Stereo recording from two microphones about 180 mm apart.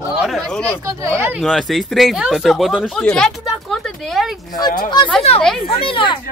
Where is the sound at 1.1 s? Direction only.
15° right (ahead or behind).